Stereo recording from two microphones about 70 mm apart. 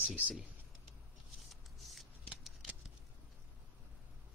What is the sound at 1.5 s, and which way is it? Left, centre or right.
Scissors, centre.